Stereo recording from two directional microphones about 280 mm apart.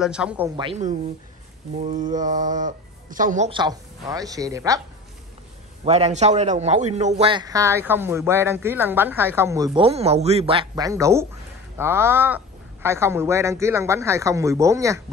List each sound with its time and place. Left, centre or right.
0.0 s speech: centre
0.6 s speech: right
5.9 s a man's voice: right